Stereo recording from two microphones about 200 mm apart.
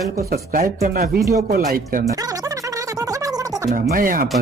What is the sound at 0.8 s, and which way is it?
Speech, 50° right (ahead or behind).